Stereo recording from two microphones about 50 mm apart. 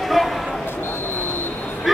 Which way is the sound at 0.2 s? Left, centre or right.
Centre.